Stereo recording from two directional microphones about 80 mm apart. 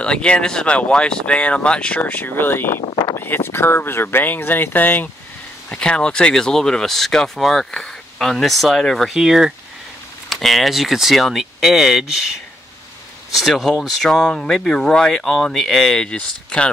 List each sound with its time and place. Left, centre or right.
0.0 s speech: centre
5.7 s speech: centre
13.3 s speech: centre